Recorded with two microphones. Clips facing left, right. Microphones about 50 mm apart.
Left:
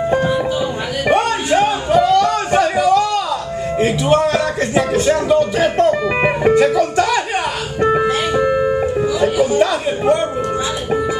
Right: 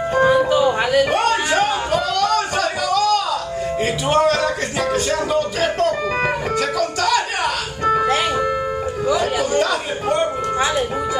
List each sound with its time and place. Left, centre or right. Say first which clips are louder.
1.1 s a sound: left 2 dB; centre
4.3 s speech: left 2 dB; left
5.3 s music: left 5 dB; centre
5.8 s music: left 5 dB; left
9.6 s a man's voice: left 4 dB; centre